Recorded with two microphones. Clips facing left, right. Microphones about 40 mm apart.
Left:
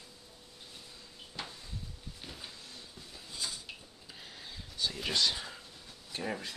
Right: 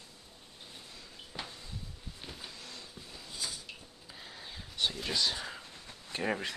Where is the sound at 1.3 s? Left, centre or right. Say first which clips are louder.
Even; right.